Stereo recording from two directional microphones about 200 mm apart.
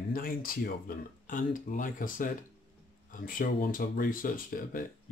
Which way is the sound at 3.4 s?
45° left (ahead or behind).